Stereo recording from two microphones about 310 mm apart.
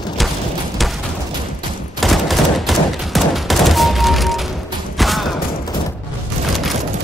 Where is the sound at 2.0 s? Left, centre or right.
Centre.